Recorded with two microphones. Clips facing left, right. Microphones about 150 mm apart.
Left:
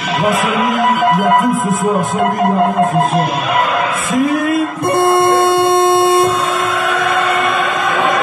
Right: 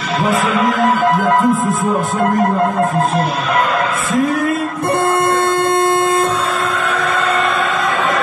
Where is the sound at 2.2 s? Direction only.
10° left (ahead or behind).